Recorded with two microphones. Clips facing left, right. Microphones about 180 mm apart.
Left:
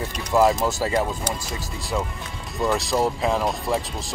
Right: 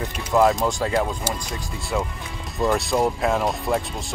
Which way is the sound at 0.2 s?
Centre (ahead or behind).